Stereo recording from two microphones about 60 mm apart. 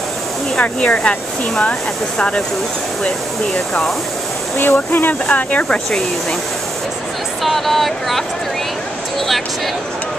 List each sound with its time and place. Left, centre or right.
0.6 s speech: left
4.6 s speech: left
5.2 s speech: left
7.4 s speech: centre